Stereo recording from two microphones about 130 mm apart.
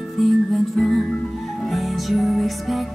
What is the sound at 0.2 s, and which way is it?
Music, centre (ahead or behind).